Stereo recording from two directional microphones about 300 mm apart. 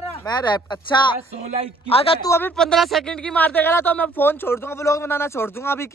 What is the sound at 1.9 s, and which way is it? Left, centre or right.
Speech, centre.